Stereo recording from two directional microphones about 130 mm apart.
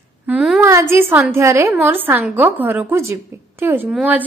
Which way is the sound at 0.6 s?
20° right (ahead or behind).